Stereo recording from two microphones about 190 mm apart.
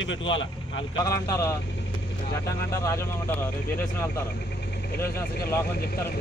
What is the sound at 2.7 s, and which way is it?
Speech, 15° left (ahead or behind).